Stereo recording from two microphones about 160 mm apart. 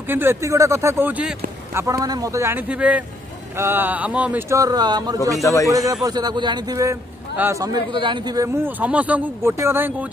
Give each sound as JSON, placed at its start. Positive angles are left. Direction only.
{"t": 0.1, "sound": "speech", "side_deg": -15}
{"t": 1.8, "sound": "speech", "side_deg": -20}
{"t": 4.6, "sound": "a man's voice", "side_deg": -25}
{"t": 5.4, "sound": "a man's voice", "side_deg": 20}
{"t": 5.7, "sound": "a man's voice", "side_deg": -20}
{"t": 8.0, "sound": "a man's voice", "side_deg": -30}
{"t": 8.6, "sound": "speech", "side_deg": -10}